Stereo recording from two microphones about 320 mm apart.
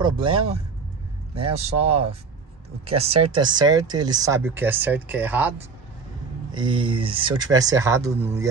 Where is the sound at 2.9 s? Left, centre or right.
Centre.